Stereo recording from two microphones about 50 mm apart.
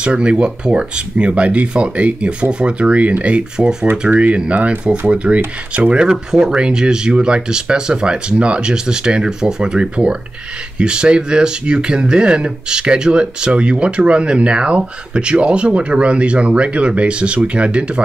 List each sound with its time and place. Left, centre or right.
0.0 s speech: right
3.9 s speech: right
4.2 s speech: right
6.0 s speech: centre